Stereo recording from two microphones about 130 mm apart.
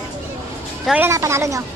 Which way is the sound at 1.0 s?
20° right (ahead or behind).